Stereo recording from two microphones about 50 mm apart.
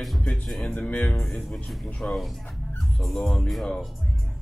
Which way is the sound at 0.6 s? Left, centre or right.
Centre.